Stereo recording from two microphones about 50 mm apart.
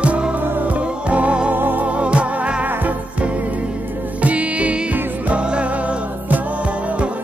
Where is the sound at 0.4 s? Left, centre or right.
Right.